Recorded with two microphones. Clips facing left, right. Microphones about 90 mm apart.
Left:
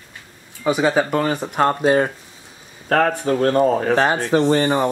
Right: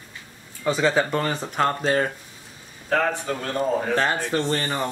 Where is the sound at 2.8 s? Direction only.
55° left (ahead or behind).